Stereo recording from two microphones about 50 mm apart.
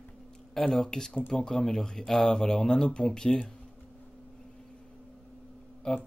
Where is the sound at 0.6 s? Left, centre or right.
Centre.